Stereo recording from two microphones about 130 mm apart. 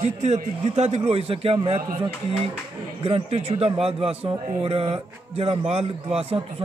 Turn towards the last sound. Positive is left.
turn(degrees=-50)  # may be behind; listen again after turning